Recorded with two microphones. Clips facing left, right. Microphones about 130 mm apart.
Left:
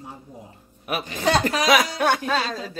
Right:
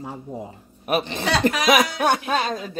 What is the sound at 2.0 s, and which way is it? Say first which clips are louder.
Speech: right 1 dB; 15° right (ahead or behind).